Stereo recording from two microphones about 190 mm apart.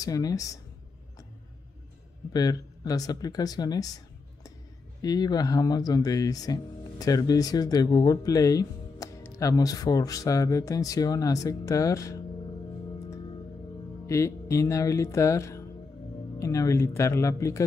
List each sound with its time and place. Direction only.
0.0 s speech: 20° left (ahead or behind)
2.3 s speech: 20° left (ahead or behind)
14.0 s speech: 15° left (ahead or behind)